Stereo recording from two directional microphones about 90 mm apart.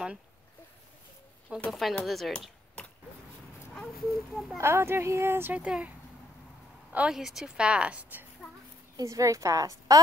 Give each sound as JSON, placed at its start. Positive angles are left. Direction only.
{"t": 1.7, "sound": "speech", "side_deg": 0}
{"t": 2.8, "sound": "vehicle", "side_deg": 15}
{"t": 3.7, "sound": "speech", "side_deg": 5}
{"t": 4.6, "sound": "a woman's voice", "side_deg": -30}
{"t": 5.6, "sound": "a woman's voice", "side_deg": -10}
{"t": 6.9, "sound": "a woman's voice", "side_deg": -15}
{"t": 8.9, "sound": "a woman's voice", "side_deg": -35}